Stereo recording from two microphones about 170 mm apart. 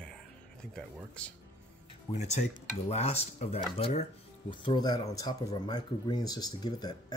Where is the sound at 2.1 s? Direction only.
40° left (ahead or behind).